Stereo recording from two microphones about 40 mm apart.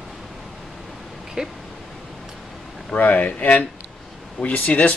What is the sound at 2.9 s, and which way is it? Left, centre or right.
Speech, left.